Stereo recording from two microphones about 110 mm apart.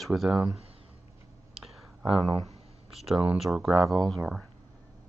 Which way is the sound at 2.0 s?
55° right (ahead or behind).